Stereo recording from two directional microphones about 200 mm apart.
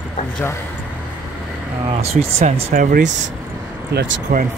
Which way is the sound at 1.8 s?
30° right (ahead or behind).